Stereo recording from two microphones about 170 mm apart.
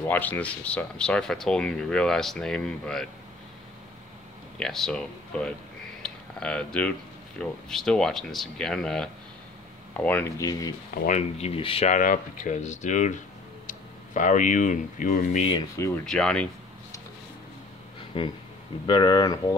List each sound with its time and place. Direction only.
0.0 s speech: 10° left (ahead or behind)
4.6 s speech: centre (ahead or behind)
10.4 s speech: 20° left (ahead or behind)
11.1 s speech: 40° left (ahead or behind)
11.9 s speech: 50° left (ahead or behind)
16.1 s speech: 5° left (ahead or behind)
18.9 s speech: 25° left (ahead or behind)